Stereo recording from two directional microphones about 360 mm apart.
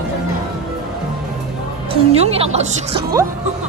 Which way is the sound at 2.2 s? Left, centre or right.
Centre.